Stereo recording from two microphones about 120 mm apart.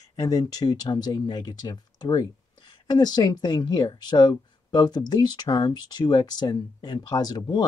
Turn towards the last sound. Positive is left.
turn(degrees=35)  # may be behind; listen again after turning